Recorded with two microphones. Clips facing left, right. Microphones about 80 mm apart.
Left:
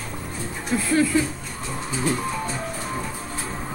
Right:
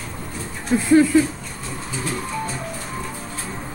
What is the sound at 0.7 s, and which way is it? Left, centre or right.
Speech, right.